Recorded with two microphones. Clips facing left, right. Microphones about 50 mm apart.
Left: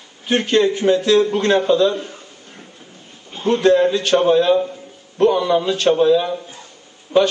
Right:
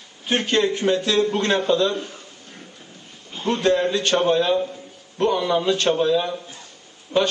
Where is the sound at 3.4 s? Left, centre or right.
Centre.